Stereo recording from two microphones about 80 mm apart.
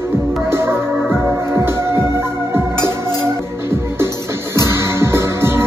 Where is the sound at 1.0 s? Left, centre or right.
Centre.